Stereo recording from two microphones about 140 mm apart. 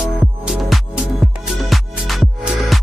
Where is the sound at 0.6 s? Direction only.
Centre (ahead or behind).